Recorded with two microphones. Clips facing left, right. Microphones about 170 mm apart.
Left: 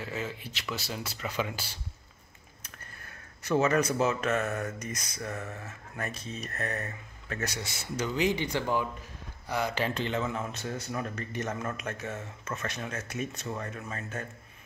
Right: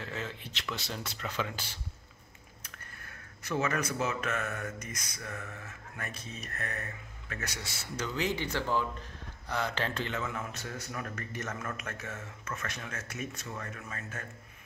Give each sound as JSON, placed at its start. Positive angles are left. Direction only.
{"t": 0.0, "sound": "speech", "side_deg": 5}
{"t": 3.4, "sound": "speech", "side_deg": 30}
{"t": 8.0, "sound": "speech", "side_deg": 15}